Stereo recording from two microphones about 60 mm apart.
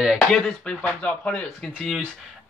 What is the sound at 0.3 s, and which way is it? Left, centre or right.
Speech, centre.